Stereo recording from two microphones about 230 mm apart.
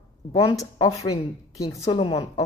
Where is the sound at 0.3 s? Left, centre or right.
Left.